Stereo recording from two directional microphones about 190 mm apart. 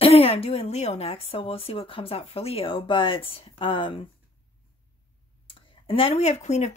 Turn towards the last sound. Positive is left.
turn(degrees=35)  # may be behind; listen again after turning